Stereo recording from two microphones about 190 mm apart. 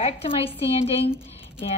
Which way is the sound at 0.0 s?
30° left (ahead or behind).